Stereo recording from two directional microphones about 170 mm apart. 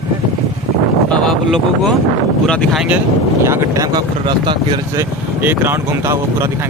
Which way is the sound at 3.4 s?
15° right (ahead or behind).